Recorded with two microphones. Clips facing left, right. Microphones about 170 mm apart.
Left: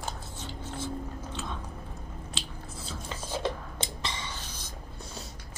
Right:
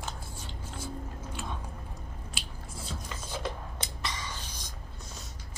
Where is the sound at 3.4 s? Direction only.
25° left (ahead or behind).